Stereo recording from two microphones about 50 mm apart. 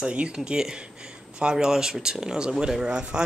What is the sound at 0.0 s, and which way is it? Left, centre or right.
Speech, right.